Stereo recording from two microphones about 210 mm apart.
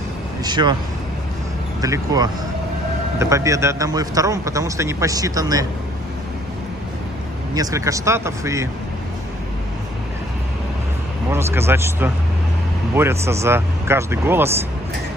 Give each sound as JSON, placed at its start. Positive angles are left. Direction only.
{"t": 0.4, "sound": "speech", "side_deg": -20}
{"t": 1.8, "sound": "a man's voice", "side_deg": -15}
{"t": 7.5, "sound": "a man's voice", "side_deg": -15}
{"t": 11.2, "sound": "a man's voice", "side_deg": -10}